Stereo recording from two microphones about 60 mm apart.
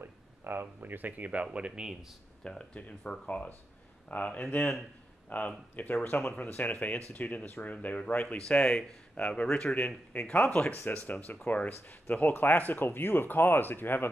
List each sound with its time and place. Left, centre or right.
0.0 s a sound: right
0.7 s speech: right; by 2.1 s centre
2.4 s speech: centre
6.0 s speech: left
6.3 s speech: left
9.8 s speech: left